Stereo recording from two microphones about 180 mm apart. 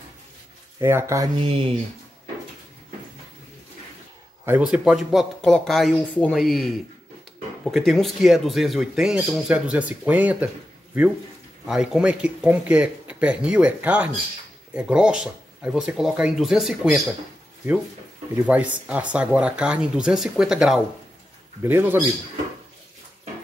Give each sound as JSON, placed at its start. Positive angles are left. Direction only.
{"t": 0.7, "sound": "speech", "side_deg": -15}
{"t": 1.4, "sound": "speech", "side_deg": -30}
{"t": 4.5, "sound": "speech", "side_deg": -10}
{"t": 11.6, "sound": "speech", "side_deg": -5}
{"t": 18.3, "sound": "speech", "side_deg": -10}